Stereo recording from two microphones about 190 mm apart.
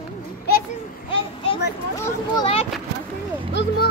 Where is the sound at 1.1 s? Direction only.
30° left (ahead or behind).